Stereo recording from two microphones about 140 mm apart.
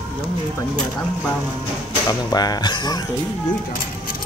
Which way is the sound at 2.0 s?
30° left (ahead or behind).